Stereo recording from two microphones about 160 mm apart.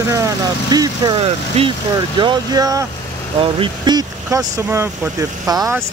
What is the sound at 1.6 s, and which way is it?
Speech, 40° right (ahead or behind).